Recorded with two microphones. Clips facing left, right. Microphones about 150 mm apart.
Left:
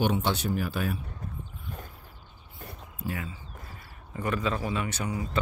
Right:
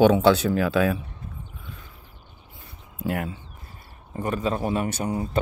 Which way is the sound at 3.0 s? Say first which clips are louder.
Right 7 dB; 65° right (ahead or behind).